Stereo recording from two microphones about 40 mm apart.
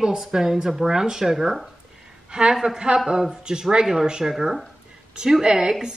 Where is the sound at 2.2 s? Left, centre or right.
Right.